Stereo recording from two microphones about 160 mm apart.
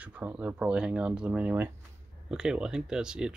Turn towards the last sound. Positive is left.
turn(degrees=-5)  # may be behind; listen again after turning